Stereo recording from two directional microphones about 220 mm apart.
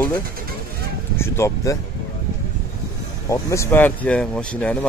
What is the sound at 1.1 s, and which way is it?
Speech, 10° left (ahead or behind).